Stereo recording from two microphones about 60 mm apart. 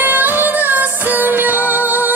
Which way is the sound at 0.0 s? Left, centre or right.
Right.